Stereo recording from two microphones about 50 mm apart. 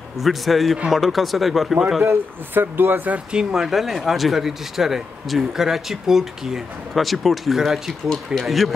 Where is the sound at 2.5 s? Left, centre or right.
Right.